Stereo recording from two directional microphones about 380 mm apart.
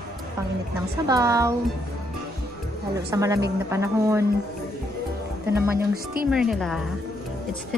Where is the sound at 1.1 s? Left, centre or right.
Centre.